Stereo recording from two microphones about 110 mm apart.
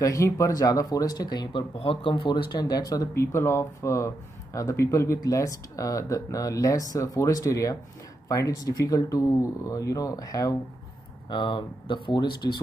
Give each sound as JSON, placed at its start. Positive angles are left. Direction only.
{"t": 0.0, "sound": "speech", "side_deg": 30}
{"t": 1.8, "sound": "speech", "side_deg": 55}
{"t": 11.2, "sound": "speech", "side_deg": 45}